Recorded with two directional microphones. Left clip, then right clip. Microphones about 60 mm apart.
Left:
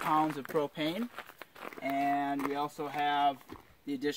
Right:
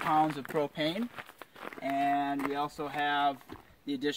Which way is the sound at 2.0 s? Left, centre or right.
Centre.